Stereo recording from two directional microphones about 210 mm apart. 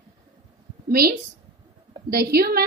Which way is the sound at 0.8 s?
45° right (ahead or behind).